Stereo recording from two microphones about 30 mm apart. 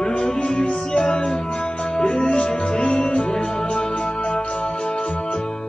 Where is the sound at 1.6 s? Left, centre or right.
Left.